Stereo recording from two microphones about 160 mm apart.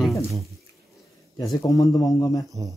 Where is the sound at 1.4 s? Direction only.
20° left (ahead or behind).